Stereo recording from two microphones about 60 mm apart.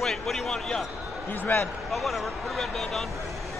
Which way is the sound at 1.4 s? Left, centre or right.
Left.